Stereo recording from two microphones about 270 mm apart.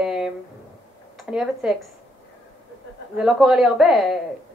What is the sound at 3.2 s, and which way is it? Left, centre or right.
A woman's voice, centre.